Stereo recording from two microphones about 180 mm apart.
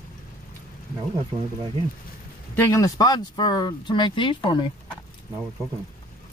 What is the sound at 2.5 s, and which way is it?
Speech, 20° left (ahead or behind).